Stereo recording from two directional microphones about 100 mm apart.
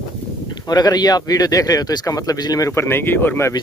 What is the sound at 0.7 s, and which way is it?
A man's voice, 40° left (ahead or behind).